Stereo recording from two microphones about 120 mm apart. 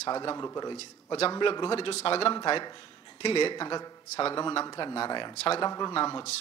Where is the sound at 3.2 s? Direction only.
50° left (ahead or behind).